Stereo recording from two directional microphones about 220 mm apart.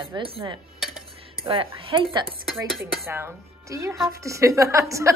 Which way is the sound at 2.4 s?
Centre (ahead or behind).